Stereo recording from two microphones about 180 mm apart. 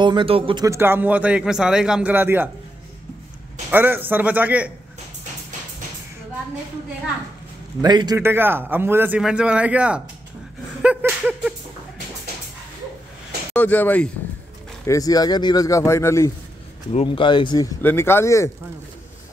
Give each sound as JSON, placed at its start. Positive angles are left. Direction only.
{"t": 0.0, "sound": "speech", "side_deg": -30}
{"t": 0.7, "sound": "a man's voice", "side_deg": -10}
{"t": 3.7, "sound": "a man's voice", "side_deg": -10}
{"t": 7.8, "sound": "speech", "side_deg": -25}
{"t": 8.2, "sound": "a man's voice", "side_deg": -10}
{"t": 10.8, "sound": "a sound", "side_deg": -10}
{"t": 13.5, "sound": "speech", "side_deg": 10}
{"t": 14.9, "sound": "speech", "side_deg": 20}
{"t": 16.9, "sound": "speech", "side_deg": 30}
{"t": 17.8, "sound": "speech", "side_deg": 15}